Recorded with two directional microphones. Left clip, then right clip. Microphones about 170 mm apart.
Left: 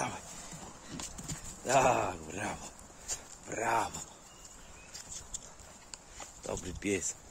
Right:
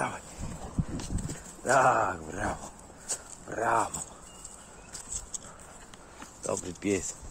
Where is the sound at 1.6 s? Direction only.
20° left (ahead or behind).